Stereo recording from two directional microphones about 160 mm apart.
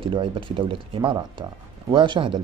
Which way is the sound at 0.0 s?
30° right (ahead or behind).